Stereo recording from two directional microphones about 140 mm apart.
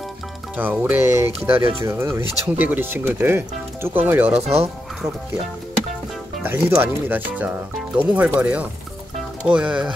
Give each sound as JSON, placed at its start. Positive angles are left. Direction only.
{"t": 0.6, "sound": "speech", "side_deg": -15}
{"t": 4.3, "sound": "speech", "side_deg": -50}
{"t": 6.4, "sound": "speech", "side_deg": -15}